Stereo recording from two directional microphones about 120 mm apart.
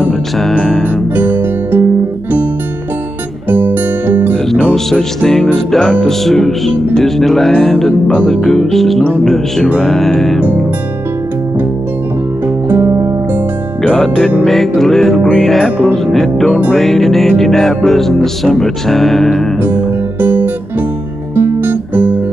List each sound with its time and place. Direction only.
0.4 s music: 5° left (ahead or behind)
1.1 s music: 15° right (ahead or behind)
3.4 s music: 15° right (ahead or behind)
4.5 s music: 5° left (ahead or behind)
12.6 s music: 15° right (ahead or behind)
13.9 s music: centre (ahead or behind)
19.6 s music: 15° right (ahead or behind)
21.4 s guitar: 15° right (ahead or behind)